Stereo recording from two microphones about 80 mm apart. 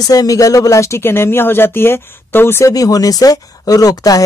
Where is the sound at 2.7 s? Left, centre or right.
Left.